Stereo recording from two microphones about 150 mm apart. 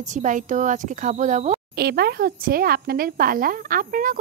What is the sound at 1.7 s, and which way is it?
Speech, 90° right.